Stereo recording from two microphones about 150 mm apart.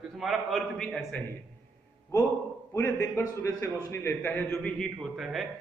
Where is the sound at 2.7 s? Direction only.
20° left (ahead or behind).